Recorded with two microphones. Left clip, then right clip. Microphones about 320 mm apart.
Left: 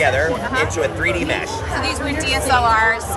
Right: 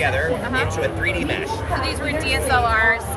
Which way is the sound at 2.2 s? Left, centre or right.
Centre.